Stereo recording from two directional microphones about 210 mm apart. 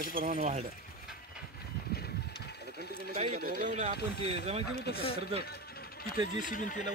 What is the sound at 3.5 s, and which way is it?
Speech, 40° right (ahead or behind).